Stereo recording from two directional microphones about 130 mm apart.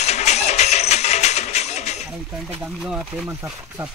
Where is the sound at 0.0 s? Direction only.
60° left (ahead or behind).